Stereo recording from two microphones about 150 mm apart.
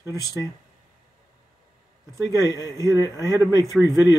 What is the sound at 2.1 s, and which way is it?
Speech, 20° right (ahead or behind).